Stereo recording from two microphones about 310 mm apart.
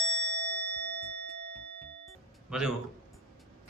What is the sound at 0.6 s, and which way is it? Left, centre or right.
Ding, left.